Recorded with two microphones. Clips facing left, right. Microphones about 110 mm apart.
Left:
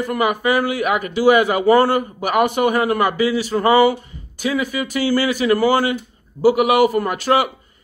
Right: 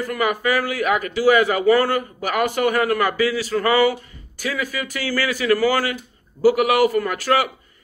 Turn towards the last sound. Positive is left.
turn(degrees=25)  # may be behind; listen again after turning